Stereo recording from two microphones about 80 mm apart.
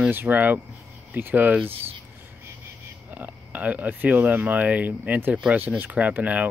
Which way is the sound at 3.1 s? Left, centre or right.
Centre.